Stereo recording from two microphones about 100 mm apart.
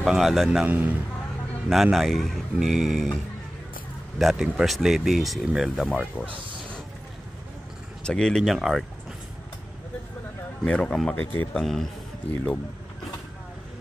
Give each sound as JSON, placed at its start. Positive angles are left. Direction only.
{"t": 0.0, "sound": "speech", "side_deg": 0}
{"t": 0.5, "sound": "a man's voice", "side_deg": -15}
{"t": 1.7, "sound": "speech", "side_deg": 0}
{"t": 4.2, "sound": "speech", "side_deg": 0}
{"t": 8.0, "sound": "speech", "side_deg": 10}
{"t": 10.6, "sound": "speech", "side_deg": 10}
{"t": 11.6, "sound": "speech", "side_deg": 0}